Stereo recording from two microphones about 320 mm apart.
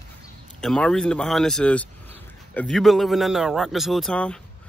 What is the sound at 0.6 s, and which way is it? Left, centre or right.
Speech, centre.